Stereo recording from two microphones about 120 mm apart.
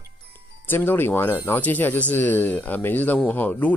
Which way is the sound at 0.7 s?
15° left (ahead or behind).